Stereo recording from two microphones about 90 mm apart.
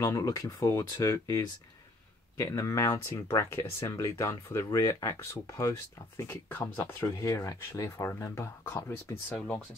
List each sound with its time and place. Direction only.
0.0 s speech: 40° left (ahead or behind)